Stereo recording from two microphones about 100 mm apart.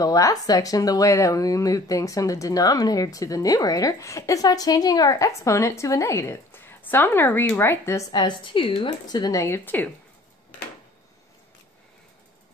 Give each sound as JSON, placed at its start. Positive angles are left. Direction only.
{"t": 0.0, "sound": "a woman's voice", "side_deg": 35}
{"t": 8.1, "sound": "a woman's voice", "side_deg": 50}
{"t": 9.0, "sound": "speech", "side_deg": 45}